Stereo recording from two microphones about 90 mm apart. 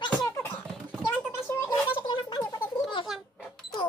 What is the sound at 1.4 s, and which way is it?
Gargling, 25° left (ahead or behind).